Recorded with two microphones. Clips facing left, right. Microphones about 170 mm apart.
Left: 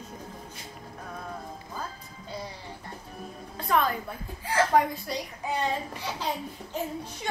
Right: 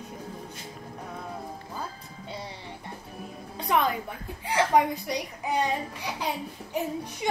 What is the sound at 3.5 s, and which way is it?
Music, 20° right (ahead or behind).